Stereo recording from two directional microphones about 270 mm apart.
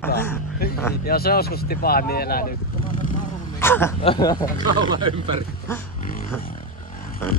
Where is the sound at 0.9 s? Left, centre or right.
Left.